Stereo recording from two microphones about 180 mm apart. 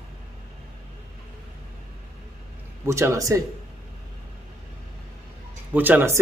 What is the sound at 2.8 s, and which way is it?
Speech, 15° right (ahead or behind).